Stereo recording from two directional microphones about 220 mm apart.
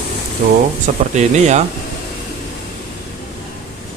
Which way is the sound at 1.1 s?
30° right (ahead or behind).